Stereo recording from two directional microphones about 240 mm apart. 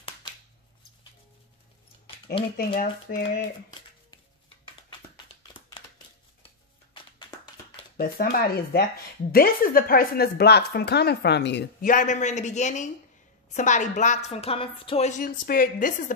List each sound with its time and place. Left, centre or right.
2.5 s speech: left
4.8 s a sound: centre
8.0 s speech: left
11.9 s a woman's voice: left